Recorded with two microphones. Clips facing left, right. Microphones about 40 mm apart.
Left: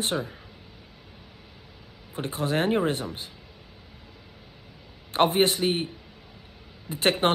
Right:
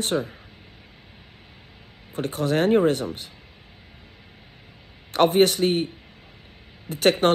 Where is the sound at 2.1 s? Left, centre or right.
Left.